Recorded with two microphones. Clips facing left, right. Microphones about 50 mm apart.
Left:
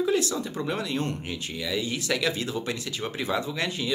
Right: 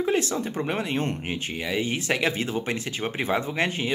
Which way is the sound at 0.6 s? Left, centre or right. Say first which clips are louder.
Right 2 dB; right.